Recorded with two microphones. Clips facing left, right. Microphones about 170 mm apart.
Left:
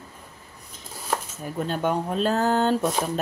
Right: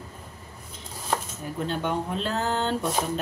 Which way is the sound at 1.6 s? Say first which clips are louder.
Left 3 dB; 45° left (ahead or behind).